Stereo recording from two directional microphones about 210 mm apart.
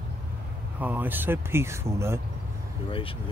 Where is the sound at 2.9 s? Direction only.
25° left (ahead or behind).